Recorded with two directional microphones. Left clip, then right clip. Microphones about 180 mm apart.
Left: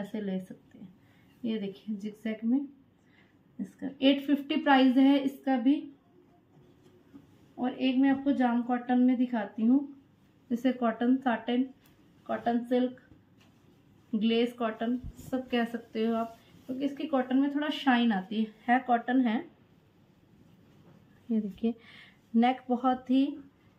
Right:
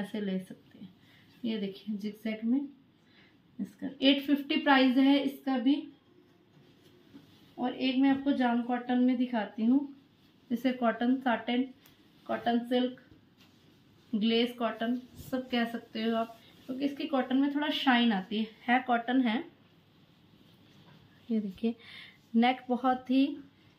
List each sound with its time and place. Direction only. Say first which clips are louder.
0.1 s a woman's voice: even; 10° left (ahead or behind)
1.4 s a woman's voice: left 1 dB; 10° left (ahead or behind)
3.8 s a woman's voice: even; 15° left (ahead or behind)
7.5 s a woman's voice: left 1 dB; 10° left (ahead or behind)
14.2 s a woman's voice: left 1 dB; 15° left (ahead or behind)
21.3 s speech: left 1 dB; 10° left (ahead or behind)